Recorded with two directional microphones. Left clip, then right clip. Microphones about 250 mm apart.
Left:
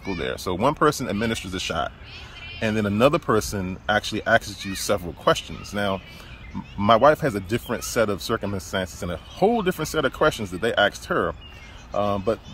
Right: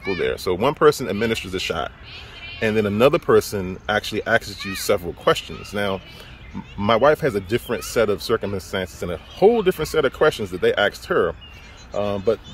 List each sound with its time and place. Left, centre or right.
0.2 s speech: centre